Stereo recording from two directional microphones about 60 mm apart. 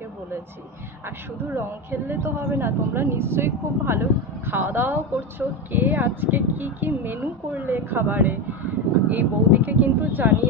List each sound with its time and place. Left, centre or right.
1.0 s a woman's voice: right